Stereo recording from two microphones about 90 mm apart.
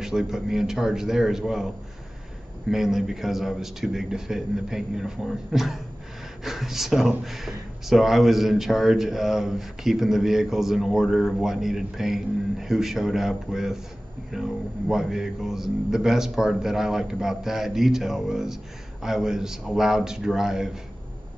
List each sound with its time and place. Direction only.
0.0 s speech: 5° right (ahead or behind)
2.7 s speech: 5° right (ahead or behind)